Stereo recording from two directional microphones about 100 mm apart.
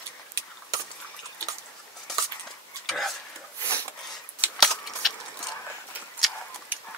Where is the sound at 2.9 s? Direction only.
Centre (ahead or behind).